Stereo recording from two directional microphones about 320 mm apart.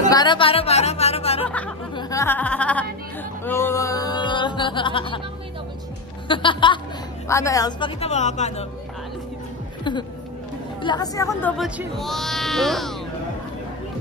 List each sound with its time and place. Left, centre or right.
0.1 s a woman's voice: centre
1.5 s a sound: centre
3.4 s music: centre
6.2 s a woman's voice: centre
9.9 s speech: centre